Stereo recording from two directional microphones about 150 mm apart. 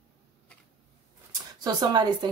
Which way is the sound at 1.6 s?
25° right (ahead or behind).